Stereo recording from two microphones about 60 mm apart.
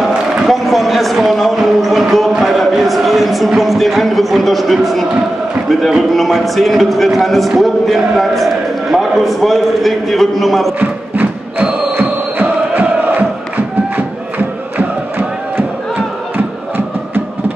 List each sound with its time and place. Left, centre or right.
0.0 s a man's voice: centre
10.8 s music: right
14.8 s chant: right
16.3 s music: right